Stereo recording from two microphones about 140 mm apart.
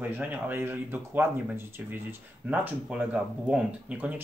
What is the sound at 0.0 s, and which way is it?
Speech, 15° right (ahead or behind).